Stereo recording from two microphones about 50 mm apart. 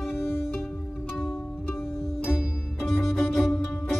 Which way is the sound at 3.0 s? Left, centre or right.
Centre.